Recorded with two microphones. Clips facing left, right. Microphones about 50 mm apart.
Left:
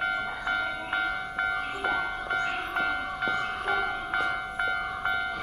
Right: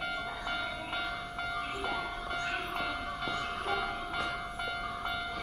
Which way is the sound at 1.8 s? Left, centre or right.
Left.